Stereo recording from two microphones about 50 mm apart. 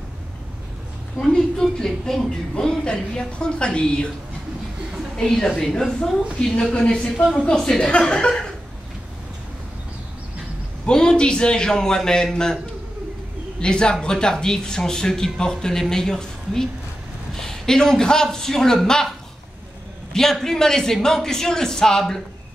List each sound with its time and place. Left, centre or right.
1.2 s a woman's voice: centre
5.1 s a woman's voice: centre
10.9 s a woman's voice: centre
13.6 s a woman's voice: centre